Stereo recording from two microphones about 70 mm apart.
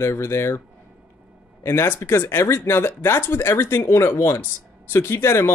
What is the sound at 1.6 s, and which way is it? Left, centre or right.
Speech, left.